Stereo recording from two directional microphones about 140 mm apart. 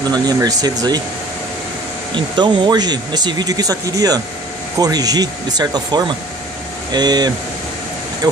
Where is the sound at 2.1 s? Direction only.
30° right (ahead or behind).